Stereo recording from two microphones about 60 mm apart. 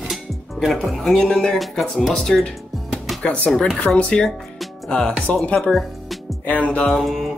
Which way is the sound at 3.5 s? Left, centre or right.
Centre.